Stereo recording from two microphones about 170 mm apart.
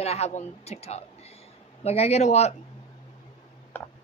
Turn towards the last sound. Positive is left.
turn(degrees=10)  # may be behind; listen again after turning